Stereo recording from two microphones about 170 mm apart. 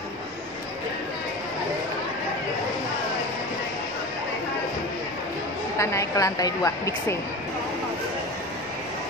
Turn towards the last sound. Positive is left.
turn(degrees=15)  # may be behind; listen again after turning